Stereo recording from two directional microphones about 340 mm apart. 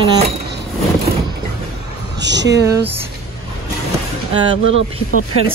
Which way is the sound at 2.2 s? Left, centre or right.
Right.